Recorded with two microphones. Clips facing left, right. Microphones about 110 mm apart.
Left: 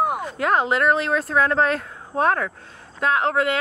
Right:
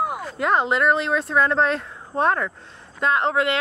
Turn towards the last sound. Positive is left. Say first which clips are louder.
# even
turn(degrees=0)  # may be behind; listen again after turning